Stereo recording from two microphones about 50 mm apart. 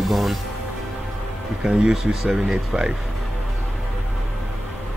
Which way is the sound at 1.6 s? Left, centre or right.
Centre.